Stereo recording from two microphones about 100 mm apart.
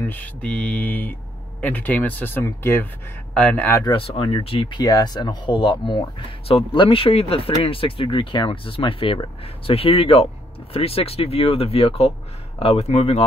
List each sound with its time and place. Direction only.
0.0 s speech: 15° left (ahead or behind)
3.3 s speech: 15° left (ahead or behind)
3.9 s speech: 65° left (ahead or behind)
4.7 s speech: 40° left (ahead or behind); by 13.2 s 90° left